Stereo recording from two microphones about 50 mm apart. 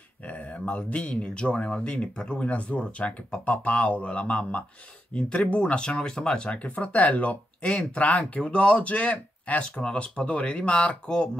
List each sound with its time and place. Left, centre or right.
0.2 s speech: left
6.6 s speech: left
9.8 s speech: left